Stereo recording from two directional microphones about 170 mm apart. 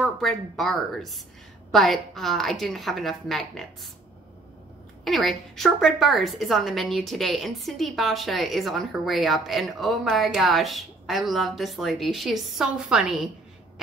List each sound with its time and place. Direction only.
0.0 s a woman's voice: centre (ahead or behind)
5.0 s a woman's voice: centre (ahead or behind)